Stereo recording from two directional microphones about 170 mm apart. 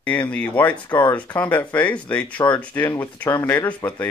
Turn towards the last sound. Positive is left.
turn(degrees=10)  # may be behind; listen again after turning